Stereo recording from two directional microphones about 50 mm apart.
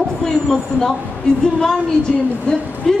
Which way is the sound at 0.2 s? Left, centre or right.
Centre.